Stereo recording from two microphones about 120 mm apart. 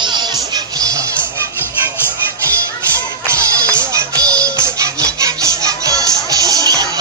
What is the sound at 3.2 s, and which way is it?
Music, 25° right (ahead or behind).